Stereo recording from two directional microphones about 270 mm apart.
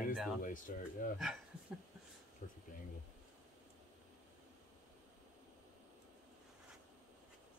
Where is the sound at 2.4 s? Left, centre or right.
Left.